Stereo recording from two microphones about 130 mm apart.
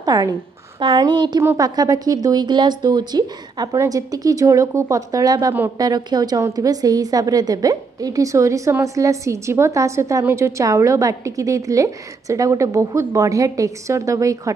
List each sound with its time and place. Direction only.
0.0 s a woman's voice: 30° right (ahead or behind)
1.4 s a woman's voice: 25° right (ahead or behind)